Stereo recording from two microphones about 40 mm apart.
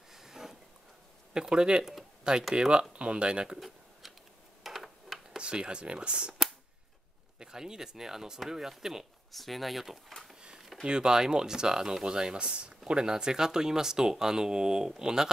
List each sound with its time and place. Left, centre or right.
0.1 s a sound: centre
1.3 s speech: centre
1.8 s speech: centre
2.5 s speech: centre
3.5 s a sound: centre
5.4 s speech: right
7.3 s speech: centre
9.3 s speech: centre
10.6 s a sound: centre
10.9 s speech: centre